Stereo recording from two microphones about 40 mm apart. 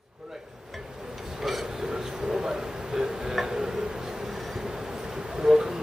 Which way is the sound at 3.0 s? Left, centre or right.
Centre.